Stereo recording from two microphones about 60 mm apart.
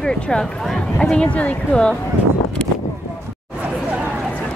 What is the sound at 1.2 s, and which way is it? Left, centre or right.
Speech, left.